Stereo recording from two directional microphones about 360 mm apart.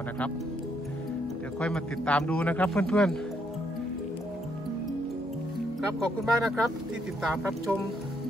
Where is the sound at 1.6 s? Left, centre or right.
Centre.